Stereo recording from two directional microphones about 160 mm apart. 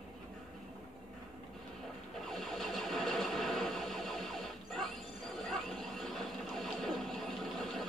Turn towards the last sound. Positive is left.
turn(degrees=0)  # may be behind; listen again after turning